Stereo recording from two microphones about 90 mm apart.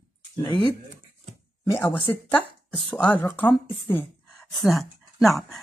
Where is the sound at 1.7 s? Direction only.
25° left (ahead or behind).